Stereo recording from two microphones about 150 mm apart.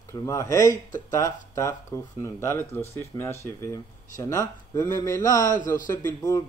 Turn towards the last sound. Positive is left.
turn(degrees=20)  # may be behind; listen again after turning